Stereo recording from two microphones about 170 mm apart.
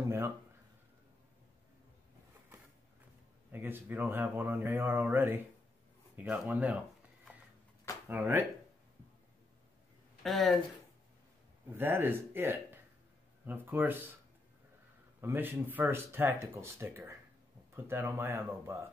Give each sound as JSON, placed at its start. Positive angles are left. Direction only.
{"t": 3.5, "sound": "speech", "side_deg": -10}
{"t": 8.1, "sound": "speech", "side_deg": -10}
{"t": 10.2, "sound": "speech", "side_deg": 0}
{"t": 11.7, "sound": "speech", "side_deg": -15}
{"t": 15.1, "sound": "speech", "side_deg": -10}